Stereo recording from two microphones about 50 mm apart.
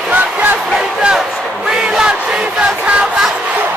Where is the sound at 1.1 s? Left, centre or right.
Centre.